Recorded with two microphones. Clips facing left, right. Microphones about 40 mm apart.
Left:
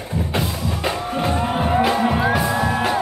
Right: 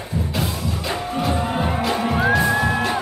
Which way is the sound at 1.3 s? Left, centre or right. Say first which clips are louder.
Left 4 dB; centre.